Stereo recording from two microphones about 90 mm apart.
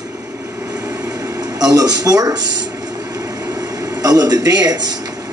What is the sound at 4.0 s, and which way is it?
Speech, 45° right (ahead or behind).